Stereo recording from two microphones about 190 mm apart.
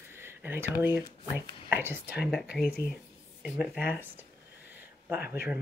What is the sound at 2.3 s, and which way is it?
Speech, centre (ahead or behind).